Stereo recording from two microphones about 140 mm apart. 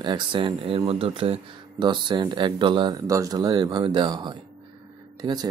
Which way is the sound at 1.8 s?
35° right (ahead or behind).